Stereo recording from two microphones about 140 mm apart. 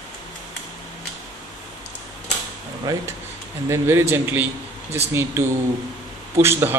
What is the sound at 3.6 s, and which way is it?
A man's voice, 20° right (ahead or behind).